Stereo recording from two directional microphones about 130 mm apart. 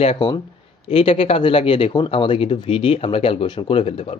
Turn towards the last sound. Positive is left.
turn(degrees=50)  # may be behind; listen again after turning